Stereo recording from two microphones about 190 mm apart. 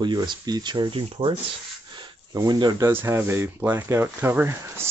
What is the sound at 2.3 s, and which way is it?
Speech, 20° right (ahead or behind).